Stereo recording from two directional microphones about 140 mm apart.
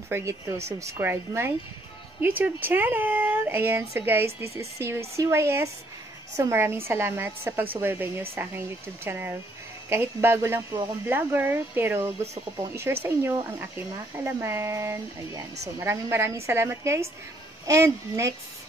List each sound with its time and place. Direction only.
0.1 s speech: 20° right (ahead or behind)